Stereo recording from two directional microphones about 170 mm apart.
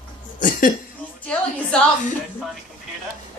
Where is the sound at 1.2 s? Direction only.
5° left (ahead or behind).